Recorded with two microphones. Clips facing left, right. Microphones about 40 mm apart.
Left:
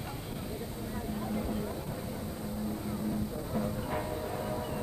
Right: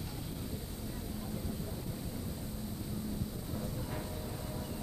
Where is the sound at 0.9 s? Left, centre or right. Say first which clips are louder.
Left 9 dB; left.